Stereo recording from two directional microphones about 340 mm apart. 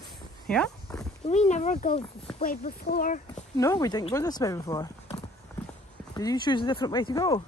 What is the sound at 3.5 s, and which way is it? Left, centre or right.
Speech, centre.